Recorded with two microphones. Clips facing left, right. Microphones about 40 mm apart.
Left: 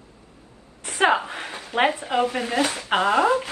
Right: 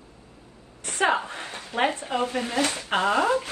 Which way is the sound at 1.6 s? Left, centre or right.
Left.